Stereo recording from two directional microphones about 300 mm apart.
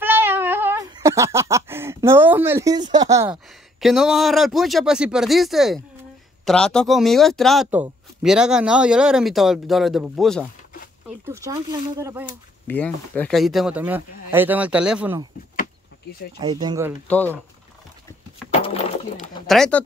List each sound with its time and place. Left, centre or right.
0.0 s a sound: centre
6.4 s speech: centre
11.1 s a sound: centre
12.0 s speech: centre
12.6 s speech: centre
16.3 s speech: centre
17.1 s speech: centre
18.5 s a sound: centre
19.4 s speech: centre